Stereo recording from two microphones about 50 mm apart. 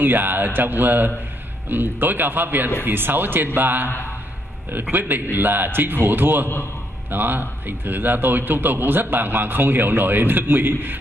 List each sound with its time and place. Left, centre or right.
0.0 s a man's voice: right
4.9 s a man's voice: right